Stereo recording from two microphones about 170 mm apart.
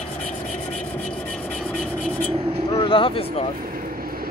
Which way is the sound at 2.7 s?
30° left (ahead or behind).